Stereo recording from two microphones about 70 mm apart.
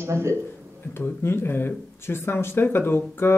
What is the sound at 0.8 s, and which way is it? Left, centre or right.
Speech, left.